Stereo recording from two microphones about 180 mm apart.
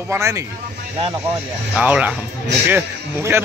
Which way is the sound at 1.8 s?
10° right (ahead or behind).